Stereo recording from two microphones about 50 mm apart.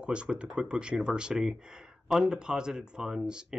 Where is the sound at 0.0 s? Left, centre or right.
Right.